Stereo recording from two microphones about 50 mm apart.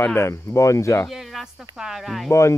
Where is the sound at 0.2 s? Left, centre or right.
Left.